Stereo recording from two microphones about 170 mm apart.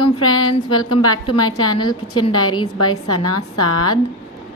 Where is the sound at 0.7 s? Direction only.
25° left (ahead or behind).